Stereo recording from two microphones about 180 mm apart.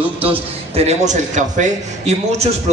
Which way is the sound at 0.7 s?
40° right (ahead or behind).